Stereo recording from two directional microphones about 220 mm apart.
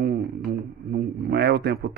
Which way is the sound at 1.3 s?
45° right (ahead or behind).